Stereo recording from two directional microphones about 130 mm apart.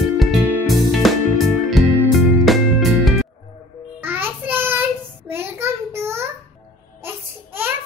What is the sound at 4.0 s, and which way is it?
Child singing, 15° right (ahead or behind).